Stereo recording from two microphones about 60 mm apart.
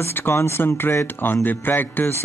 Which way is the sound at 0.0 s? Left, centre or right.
Left.